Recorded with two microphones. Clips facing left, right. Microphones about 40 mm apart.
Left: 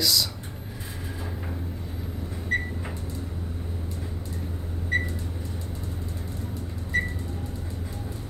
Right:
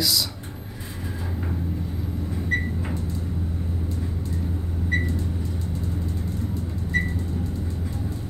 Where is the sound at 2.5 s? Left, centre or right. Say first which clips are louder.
Right 1 dB; centre.